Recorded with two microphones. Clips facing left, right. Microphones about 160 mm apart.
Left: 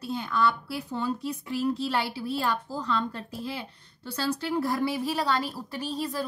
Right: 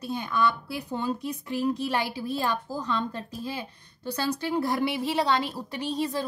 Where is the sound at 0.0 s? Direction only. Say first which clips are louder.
Even; 20° right (ahead or behind).